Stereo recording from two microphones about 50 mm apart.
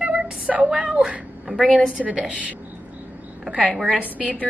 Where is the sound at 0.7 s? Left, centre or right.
Centre.